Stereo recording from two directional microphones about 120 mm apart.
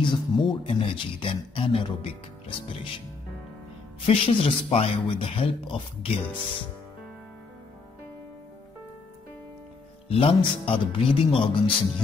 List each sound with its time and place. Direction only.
0.0 s speech: 40° left (ahead or behind)
4.0 s speech: 50° left (ahead or behind)
10.0 s speech: 50° left (ahead or behind)